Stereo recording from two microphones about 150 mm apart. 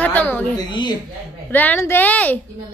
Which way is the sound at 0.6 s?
30° left (ahead or behind).